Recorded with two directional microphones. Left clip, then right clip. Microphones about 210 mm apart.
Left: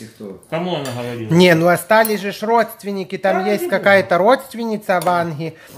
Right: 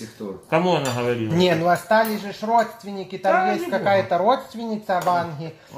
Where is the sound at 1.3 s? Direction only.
40° left (ahead or behind).